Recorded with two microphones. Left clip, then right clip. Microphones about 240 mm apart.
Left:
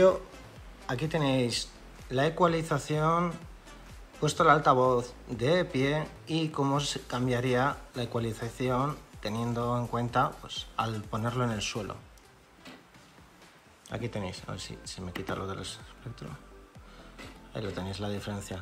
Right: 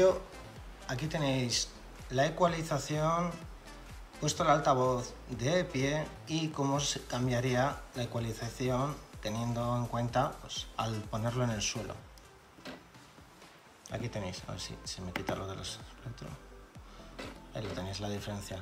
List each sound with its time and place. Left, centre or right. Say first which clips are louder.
0.8 s speech: left 4 dB; centre
13.8 s speech: left 3 dB; centre
17.5 s speech: left 4 dB; centre